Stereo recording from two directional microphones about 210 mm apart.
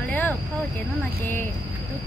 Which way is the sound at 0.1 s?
10° left (ahead or behind).